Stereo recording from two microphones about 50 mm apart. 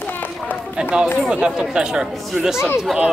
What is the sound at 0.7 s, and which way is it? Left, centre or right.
Speech, centre.